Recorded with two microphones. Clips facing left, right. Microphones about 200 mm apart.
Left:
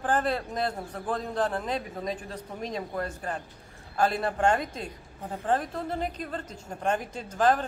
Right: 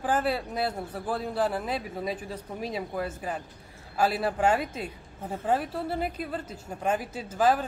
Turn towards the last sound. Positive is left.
turn(degrees=-5)  # may be behind; listen again after turning